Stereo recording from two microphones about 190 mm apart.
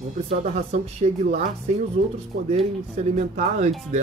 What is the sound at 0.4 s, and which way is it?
Speech, 40° right (ahead or behind).